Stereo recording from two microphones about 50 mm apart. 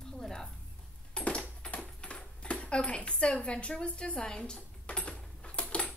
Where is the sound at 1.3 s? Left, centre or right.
Left.